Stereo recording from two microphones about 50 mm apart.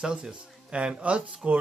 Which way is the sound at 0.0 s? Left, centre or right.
Centre.